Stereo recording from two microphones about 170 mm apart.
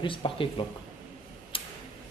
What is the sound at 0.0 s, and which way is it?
Speech, 30° left (ahead or behind).